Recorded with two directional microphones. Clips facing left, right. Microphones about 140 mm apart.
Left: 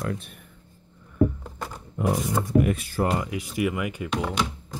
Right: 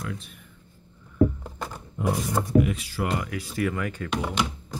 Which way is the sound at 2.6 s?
50° left (ahead or behind).